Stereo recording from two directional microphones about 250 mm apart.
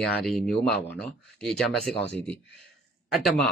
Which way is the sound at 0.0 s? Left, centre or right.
Centre.